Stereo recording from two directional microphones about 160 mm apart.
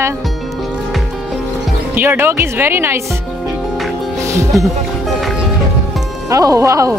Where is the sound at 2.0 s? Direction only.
15° right (ahead or behind).